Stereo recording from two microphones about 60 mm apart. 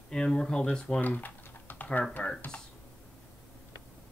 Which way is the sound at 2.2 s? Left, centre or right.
Centre.